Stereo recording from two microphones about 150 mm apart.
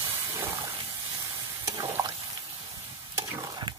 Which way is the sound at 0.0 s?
25° right (ahead or behind).